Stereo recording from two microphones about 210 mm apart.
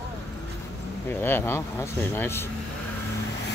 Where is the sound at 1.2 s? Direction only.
10° left (ahead or behind).